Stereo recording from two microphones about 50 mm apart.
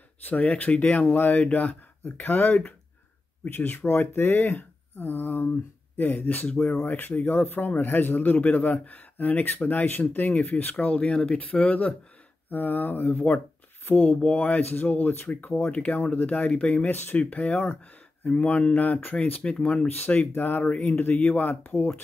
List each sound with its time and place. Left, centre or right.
0.2 s a man's voice: left
12.4 s a man's voice: left
14.1 s speech: left
14.6 s a man's voice: left
15.7 s a man's voice: left
16.9 s speech: left
17.2 s speech: left
18.8 s a man's voice: left
19.4 s speech: centre
20.2 s a man's voice: left
20.6 s speech: left
20.9 s speech: left
21.2 s a man's voice: left